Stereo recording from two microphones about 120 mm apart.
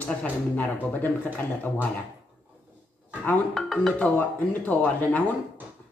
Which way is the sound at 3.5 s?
5° left (ahead or behind).